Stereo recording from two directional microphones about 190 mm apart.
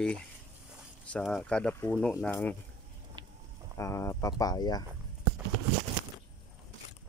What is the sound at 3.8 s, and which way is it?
Speech, 15° left (ahead or behind).